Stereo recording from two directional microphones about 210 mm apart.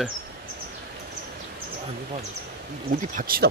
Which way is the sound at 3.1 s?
45° right (ahead or behind).